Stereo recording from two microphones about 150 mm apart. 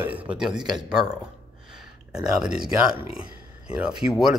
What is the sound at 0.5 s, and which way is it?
Speech, 30° right (ahead or behind).